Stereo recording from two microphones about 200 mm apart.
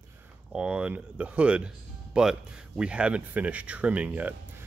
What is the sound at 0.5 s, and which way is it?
Speech, 5° right (ahead or behind).